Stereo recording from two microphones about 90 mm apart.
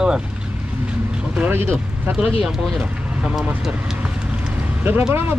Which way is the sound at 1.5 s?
25° right (ahead or behind).